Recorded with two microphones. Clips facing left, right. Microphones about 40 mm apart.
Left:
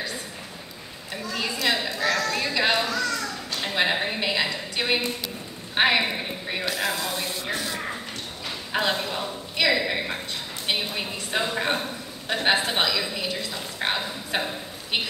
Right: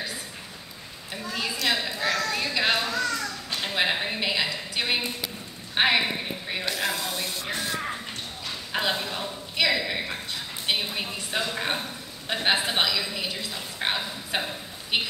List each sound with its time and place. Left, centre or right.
1.3 s a man's voice: centre
2.9 s a child's voice: right
3.6 s a man's voice: centre
8.7 s a man's voice: centre
10.7 s a man's voice: centre